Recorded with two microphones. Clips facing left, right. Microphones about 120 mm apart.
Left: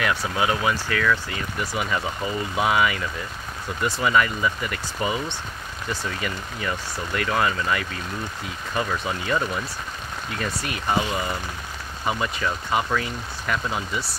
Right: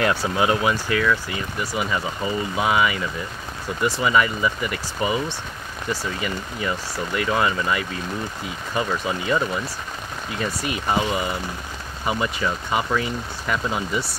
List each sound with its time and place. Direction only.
0.0 s speech: 30° right (ahead or behind)
1.6 s speech: 5° right (ahead or behind)
10.4 s speech: 10° right (ahead or behind)